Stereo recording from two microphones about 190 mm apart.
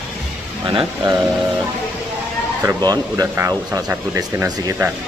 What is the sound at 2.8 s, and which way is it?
Speech, 20° right (ahead or behind).